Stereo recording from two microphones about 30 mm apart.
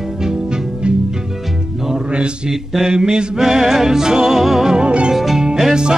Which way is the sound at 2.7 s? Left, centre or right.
Right.